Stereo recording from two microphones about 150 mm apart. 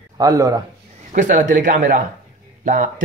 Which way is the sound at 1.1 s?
60° right (ahead or behind).